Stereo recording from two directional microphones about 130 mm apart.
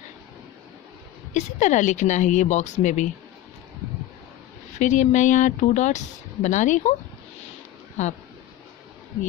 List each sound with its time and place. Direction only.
1.3 s speech: 65° left (ahead or behind)
4.7 s speech: 70° left (ahead or behind)
8.0 s speech: 70° left (ahead or behind)